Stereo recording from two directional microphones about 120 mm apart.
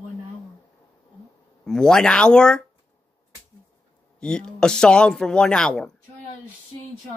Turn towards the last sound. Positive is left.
turn(degrees=5)  # may be behind; listen again after turning